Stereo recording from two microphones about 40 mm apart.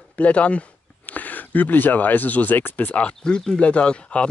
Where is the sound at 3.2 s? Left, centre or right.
Centre.